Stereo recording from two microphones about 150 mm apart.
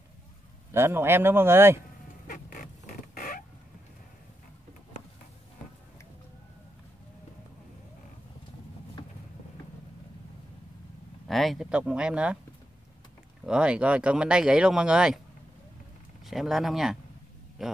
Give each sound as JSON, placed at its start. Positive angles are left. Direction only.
{"t": 0.7, "sound": "speech", "side_deg": -15}
{"t": 2.2, "sound": "a sound", "side_deg": 65}
{"t": 11.2, "sound": "speech", "side_deg": 0}
{"t": 13.5, "sound": "speech", "side_deg": -5}
{"t": 16.3, "sound": "speech", "side_deg": 0}